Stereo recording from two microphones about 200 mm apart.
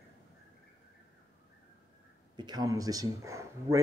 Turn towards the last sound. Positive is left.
turn(degrees=-15)  # may be behind; listen again after turning